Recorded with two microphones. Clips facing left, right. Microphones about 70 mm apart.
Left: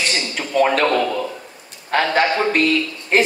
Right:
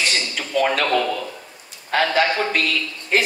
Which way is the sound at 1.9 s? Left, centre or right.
Left.